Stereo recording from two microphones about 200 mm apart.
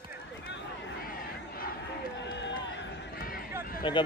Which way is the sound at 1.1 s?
45° left (ahead or behind).